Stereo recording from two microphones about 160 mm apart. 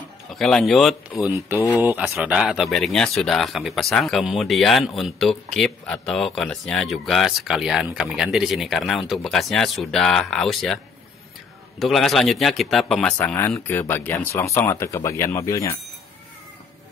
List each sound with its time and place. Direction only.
0.3 s speech: 5° left (ahead or behind)
1.2 s speech: 15° right (ahead or behind)
11.8 s speech: centre (ahead or behind)
13.2 s speech: 15° left (ahead or behind)